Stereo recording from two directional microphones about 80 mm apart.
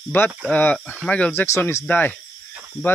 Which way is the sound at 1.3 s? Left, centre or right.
Left.